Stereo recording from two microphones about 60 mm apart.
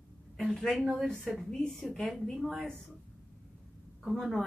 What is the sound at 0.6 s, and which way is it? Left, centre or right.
A woman's voice, centre.